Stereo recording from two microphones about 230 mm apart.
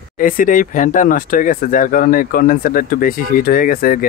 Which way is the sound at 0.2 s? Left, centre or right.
Left.